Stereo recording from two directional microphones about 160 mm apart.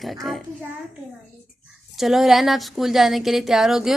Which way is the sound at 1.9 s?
Centre (ahead or behind).